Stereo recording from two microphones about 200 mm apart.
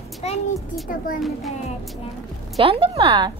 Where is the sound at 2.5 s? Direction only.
30° right (ahead or behind).